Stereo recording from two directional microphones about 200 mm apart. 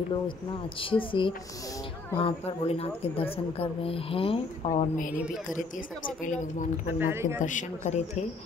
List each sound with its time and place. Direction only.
0.7 s speech: 25° left (ahead or behind)
7.0 s speech: 10° right (ahead or behind)
7.3 s speech: 40° left (ahead or behind)